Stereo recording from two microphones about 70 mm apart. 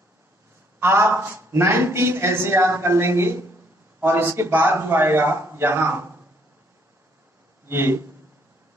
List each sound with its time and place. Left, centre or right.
0.7 s a man's voice: right
7.6 s speech: right